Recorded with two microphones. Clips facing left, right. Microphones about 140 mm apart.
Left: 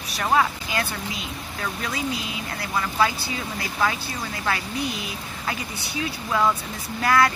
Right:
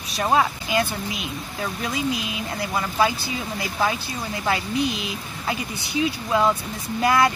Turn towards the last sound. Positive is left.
turn(degrees=-20)  # may be behind; listen again after turning